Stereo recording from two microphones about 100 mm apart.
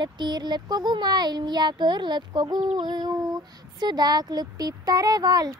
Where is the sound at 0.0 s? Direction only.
45° right (ahead or behind).